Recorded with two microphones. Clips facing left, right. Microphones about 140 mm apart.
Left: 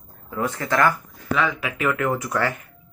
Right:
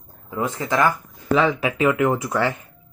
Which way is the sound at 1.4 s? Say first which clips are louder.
Right 4 dB; 30° right (ahead or behind).